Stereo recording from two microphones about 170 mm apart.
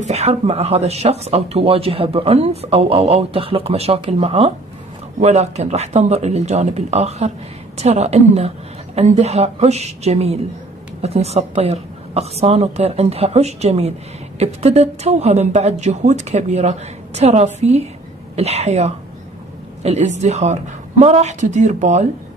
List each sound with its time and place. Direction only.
0.0 s speech: 40° right (ahead or behind)